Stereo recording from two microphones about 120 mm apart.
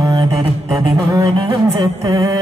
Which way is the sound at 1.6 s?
30° right (ahead or behind).